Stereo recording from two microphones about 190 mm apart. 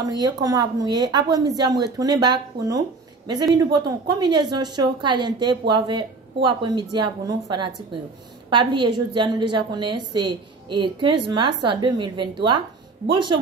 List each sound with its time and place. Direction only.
0.1 s a woman's voice: 20° right (ahead or behind)